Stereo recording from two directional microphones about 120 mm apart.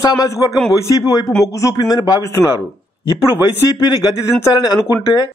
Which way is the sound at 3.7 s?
30° left (ahead or behind).